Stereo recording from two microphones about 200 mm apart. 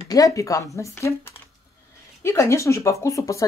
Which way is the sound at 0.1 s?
15° left (ahead or behind).